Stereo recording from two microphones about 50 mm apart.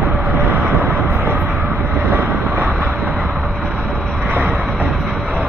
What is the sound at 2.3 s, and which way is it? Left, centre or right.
Vehicle, right.